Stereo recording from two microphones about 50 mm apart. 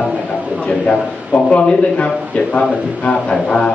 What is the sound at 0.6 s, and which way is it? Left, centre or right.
A man's voice, left.